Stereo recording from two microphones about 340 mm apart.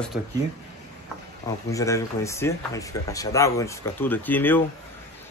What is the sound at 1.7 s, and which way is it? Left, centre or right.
Speech, centre.